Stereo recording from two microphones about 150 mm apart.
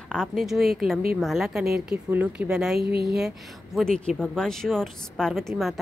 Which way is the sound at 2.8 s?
90° right.